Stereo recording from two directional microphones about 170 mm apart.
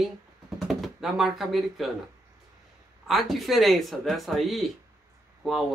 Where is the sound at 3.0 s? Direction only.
Centre (ahead or behind).